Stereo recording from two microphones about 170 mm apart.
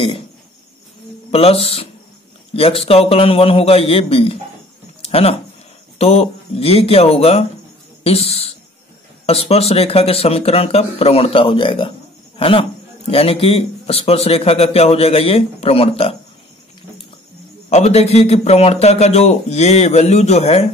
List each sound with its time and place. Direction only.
1.3 s a man's voice: 35° left (ahead or behind)
5.0 s a sound: 35° left (ahead or behind)
5.9 s a man's voice: 35° left (ahead or behind)
8.0 s a sound: 35° left (ahead or behind)
9.2 s a man's voice: 35° left (ahead or behind)
17.6 s a man's voice: 40° left (ahead or behind)